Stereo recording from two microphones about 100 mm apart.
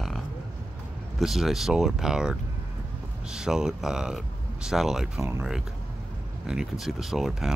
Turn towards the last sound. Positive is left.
turn(degrees=0)  # may be behind; listen again after turning